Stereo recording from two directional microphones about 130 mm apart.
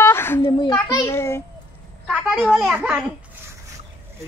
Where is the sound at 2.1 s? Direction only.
10° right (ahead or behind).